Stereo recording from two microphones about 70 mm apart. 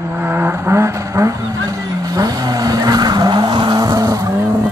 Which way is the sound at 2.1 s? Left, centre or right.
Right.